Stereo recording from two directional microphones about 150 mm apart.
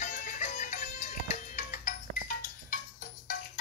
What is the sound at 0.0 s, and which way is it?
Music, 60° left (ahead or behind).